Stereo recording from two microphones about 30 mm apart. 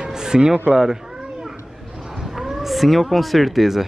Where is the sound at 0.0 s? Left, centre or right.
Right.